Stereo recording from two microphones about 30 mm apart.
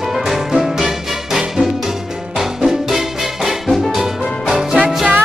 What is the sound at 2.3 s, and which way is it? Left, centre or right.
Music, centre.